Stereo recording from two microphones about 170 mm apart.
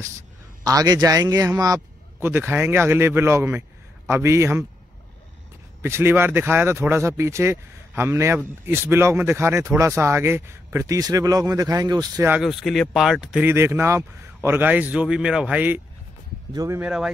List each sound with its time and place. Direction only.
0.7 s a man's voice: 20° right (ahead or behind)
5.8 s speech: 15° right (ahead or behind)
12.3 s speech: centre (ahead or behind)